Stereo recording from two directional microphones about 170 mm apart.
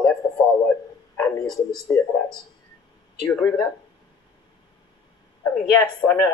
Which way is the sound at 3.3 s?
20° left (ahead or behind).